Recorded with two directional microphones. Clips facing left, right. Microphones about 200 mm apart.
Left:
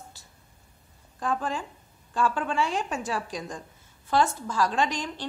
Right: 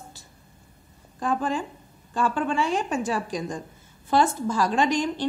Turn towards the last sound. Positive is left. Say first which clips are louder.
# right 5 dB
turn(degrees=0)  # may be behind; listen again after turning